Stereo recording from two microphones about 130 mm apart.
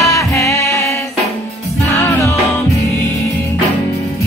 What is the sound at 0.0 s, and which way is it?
Music, 25° left (ahead or behind).